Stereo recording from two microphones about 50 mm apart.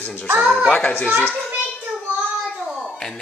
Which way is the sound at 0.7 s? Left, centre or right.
Left.